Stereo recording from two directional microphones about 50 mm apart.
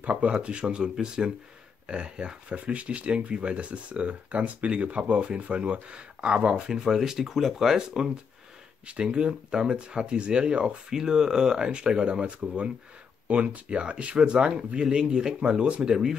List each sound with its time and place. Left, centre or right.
0.0 s speech: right
6.7 s speech: centre
8.8 s speech: right
11.0 s speech: centre